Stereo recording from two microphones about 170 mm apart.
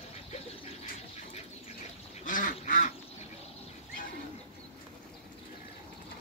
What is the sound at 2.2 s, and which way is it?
Duck, 50° left (ahead or behind).